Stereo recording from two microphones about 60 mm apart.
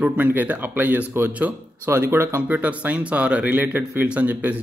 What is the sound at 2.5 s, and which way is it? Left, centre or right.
Speech, right.